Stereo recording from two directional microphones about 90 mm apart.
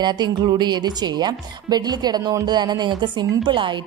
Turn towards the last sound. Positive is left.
turn(degrees=-60)  # may be behind; listen again after turning